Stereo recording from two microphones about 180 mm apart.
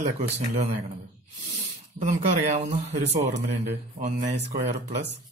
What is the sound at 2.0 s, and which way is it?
Speech, 40° right (ahead or behind).